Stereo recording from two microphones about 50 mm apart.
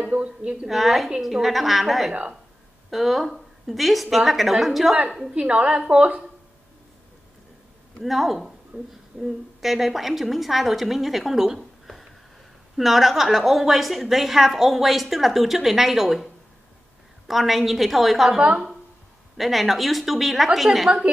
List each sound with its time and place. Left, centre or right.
0.1 s a woman's voice: right
0.7 s a woman's voice: centre
5.3 s a woman's voice: right
8.0 s a woman's voice: centre
17.3 s a woman's voice: centre